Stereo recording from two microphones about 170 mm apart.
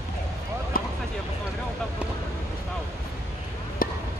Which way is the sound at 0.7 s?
60° left (ahead or behind).